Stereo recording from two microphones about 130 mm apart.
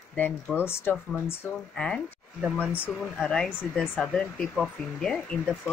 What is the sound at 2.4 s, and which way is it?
Speech, 10° right (ahead or behind).